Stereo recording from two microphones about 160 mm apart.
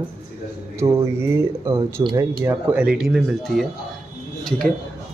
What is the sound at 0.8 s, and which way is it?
Speech, 15° right (ahead or behind).